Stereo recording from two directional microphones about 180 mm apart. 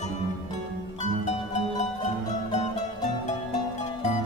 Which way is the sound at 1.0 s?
40° left (ahead or behind).